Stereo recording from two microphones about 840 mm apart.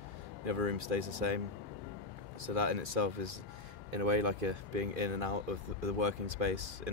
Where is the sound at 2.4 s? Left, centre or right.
Right.